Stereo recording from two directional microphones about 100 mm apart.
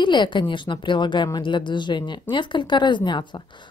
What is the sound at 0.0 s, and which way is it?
Speech, 50° left (ahead or behind).